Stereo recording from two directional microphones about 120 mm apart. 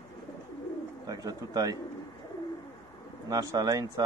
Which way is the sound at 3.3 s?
30° right (ahead or behind).